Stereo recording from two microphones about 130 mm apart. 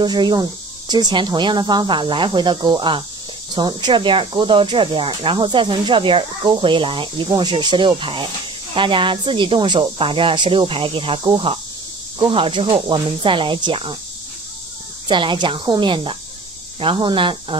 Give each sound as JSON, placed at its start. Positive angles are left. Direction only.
{"t": 0.0, "sound": "speech", "side_deg": -35}
{"t": 15.0, "sound": "speech", "side_deg": -35}